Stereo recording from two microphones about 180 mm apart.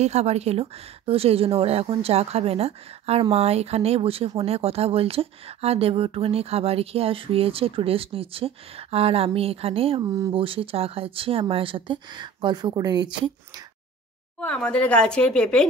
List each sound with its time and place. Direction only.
0.0 s speech: 35° right (ahead or behind)
14.4 s a woman's voice: 5° left (ahead or behind)